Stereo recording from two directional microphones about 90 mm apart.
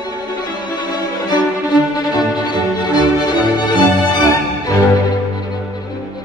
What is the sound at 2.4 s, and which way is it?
Music, 55° left (ahead or behind).